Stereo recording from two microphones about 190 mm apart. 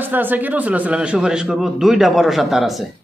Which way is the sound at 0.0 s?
10° right (ahead or behind).